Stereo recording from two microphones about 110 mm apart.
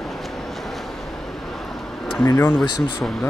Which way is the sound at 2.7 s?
45° left (ahead or behind).